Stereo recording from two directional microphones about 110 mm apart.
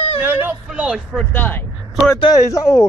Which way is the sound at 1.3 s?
15° left (ahead or behind).